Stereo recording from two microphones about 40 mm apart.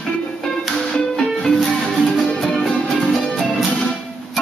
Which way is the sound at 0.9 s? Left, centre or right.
Centre.